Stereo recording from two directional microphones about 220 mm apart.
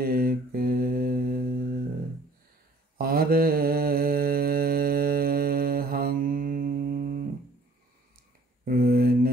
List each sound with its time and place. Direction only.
0.0 s mantra: 40° right (ahead or behind)
3.0 s mantra: 40° right (ahead or behind)
8.6 s mantra: 40° right (ahead or behind)